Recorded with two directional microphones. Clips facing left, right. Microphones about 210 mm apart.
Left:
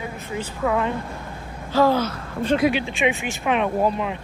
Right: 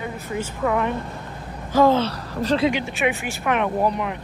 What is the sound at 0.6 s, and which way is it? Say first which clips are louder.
Speech: even; 5° left (ahead or behind).